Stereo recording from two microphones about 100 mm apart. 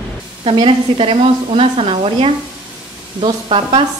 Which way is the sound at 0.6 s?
65° right (ahead or behind).